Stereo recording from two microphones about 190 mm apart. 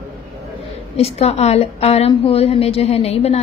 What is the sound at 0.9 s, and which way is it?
A woman's voice, 35° left (ahead or behind).